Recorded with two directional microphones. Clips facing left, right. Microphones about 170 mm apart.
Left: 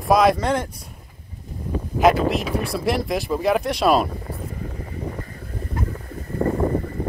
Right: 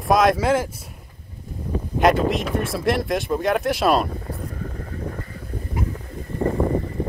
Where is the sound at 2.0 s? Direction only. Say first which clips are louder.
Left 1 dB; centre (ahead or behind).